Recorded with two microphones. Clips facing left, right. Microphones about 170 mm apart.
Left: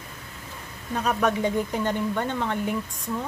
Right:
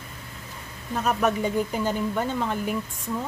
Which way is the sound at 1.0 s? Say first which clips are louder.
Even; 5° right (ahead or behind).